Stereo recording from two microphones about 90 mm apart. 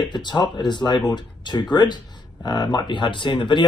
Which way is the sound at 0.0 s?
55° left (ahead or behind).